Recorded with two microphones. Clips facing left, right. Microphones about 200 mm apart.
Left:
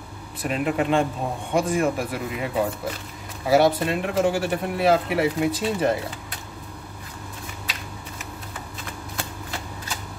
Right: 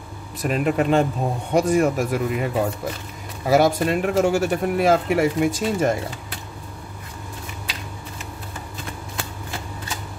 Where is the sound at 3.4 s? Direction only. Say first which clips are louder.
Right 1 dB; 45° right (ahead or behind).